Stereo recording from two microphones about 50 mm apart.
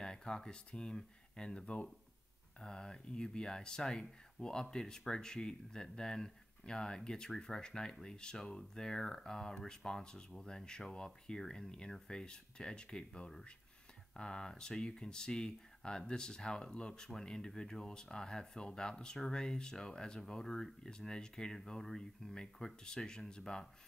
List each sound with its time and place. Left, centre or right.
0.0 s speech: centre